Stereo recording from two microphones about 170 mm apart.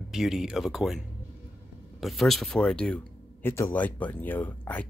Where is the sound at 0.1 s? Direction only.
Centre (ahead or behind).